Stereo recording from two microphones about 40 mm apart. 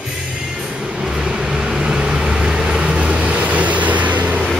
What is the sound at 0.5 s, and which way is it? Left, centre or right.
Music, centre.